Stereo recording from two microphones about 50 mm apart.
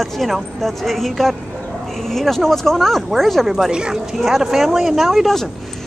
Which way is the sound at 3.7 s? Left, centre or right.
Centre.